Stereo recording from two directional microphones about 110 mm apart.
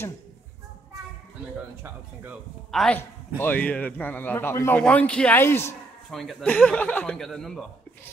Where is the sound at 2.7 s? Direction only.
5° left (ahead or behind).